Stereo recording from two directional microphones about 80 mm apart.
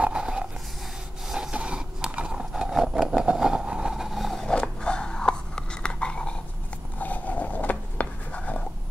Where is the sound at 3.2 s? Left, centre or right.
Centre.